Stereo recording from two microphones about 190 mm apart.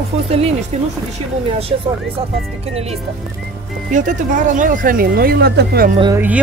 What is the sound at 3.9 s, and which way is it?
Speech, 40° right (ahead or behind).